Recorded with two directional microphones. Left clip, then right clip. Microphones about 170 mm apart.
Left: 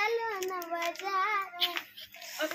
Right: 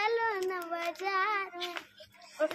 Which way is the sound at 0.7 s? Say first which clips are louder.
Left 2 dB; 50° right (ahead or behind).